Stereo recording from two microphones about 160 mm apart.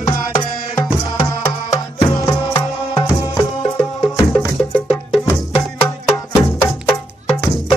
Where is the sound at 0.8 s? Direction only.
25° left (ahead or behind).